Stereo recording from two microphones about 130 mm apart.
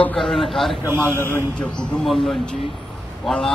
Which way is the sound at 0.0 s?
5° left (ahead or behind).